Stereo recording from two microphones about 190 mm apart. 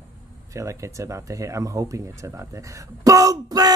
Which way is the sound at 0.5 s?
15° right (ahead or behind).